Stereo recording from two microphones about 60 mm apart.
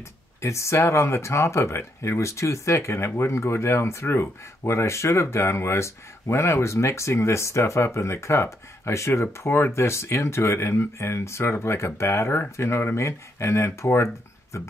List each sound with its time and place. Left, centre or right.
0.4 s speech: left